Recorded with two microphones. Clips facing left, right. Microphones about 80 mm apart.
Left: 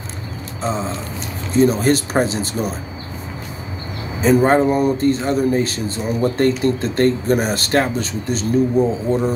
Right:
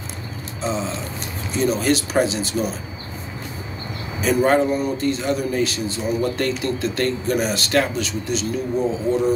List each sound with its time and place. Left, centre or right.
0.6 s speech: left
4.2 s speech: left
4.7 s speech: left